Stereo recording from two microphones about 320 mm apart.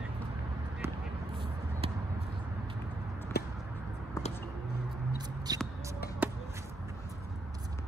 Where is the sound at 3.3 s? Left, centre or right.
Left.